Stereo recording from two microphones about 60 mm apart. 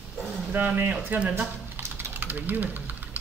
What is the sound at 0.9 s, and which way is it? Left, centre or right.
Speech, centre.